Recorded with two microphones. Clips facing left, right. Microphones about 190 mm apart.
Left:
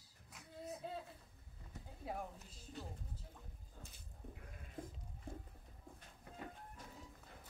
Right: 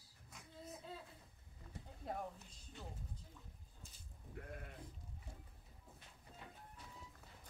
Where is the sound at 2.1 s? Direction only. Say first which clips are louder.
Even; 5° left (ahead or behind).